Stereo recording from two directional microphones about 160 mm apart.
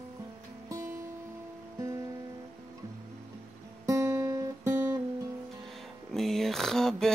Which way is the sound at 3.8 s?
20° right (ahead or behind).